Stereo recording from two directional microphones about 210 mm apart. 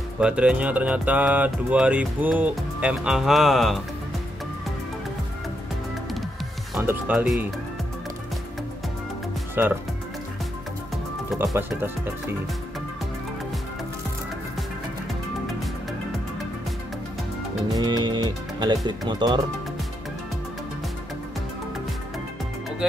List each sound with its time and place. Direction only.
0.2 s speech: 5° right (ahead or behind)
6.7 s speech: 5° right (ahead or behind)
9.6 s speech: 10° right (ahead or behind)
11.3 s speech: 10° right (ahead or behind)
17.7 s speech: 20° right (ahead or behind)